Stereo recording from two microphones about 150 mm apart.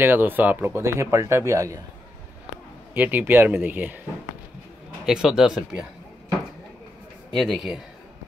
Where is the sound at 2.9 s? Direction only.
10° right (ahead or behind).